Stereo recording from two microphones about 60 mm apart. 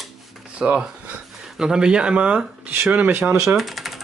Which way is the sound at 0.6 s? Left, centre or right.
Centre.